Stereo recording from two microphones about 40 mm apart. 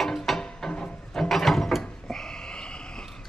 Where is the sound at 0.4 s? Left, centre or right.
Centre.